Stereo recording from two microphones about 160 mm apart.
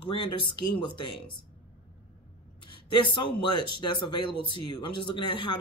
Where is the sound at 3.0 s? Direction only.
30° left (ahead or behind).